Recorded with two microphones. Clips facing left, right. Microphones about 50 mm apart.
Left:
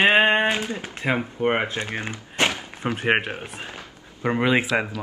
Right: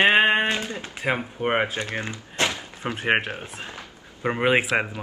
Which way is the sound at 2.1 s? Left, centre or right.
Left.